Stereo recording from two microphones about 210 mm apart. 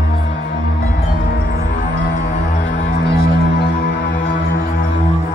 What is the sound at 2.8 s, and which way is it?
Music, 55° left (ahead or behind).